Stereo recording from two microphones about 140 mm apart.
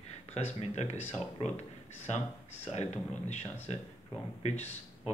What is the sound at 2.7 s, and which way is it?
Speech, 55° left (ahead or behind).